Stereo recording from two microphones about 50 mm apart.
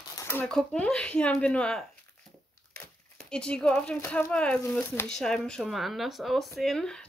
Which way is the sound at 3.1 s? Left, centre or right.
Centre.